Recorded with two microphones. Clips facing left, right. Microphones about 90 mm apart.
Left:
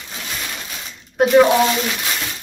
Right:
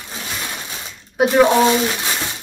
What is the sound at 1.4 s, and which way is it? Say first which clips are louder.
Speech: right 2 dB; 20° right (ahead or behind).